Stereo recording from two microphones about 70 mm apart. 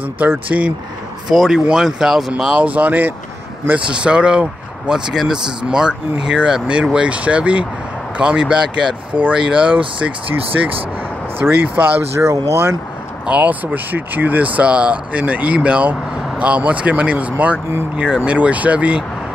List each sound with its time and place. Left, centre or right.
0.5 s speech: centre
1.3 s speech: centre; by 3.2 s right
3.9 s speech: centre
11.3 s speech: right
12.2 s speech: right
13.3 s speech: centre